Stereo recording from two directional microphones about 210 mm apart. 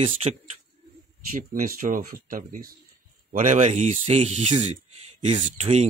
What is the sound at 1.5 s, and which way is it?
Speech, 40° right (ahead or behind).